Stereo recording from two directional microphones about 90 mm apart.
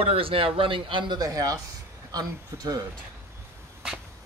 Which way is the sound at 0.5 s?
75° right (ahead or behind).